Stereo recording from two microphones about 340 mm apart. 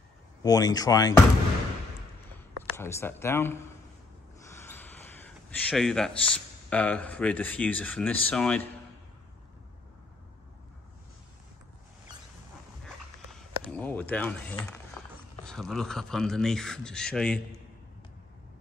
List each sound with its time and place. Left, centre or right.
0.4 s speech: centre
2.7 s speech: centre
4.5 s gasp: centre
6.3 s speech: centre
12.8 s a sound: centre
15.4 s speech: centre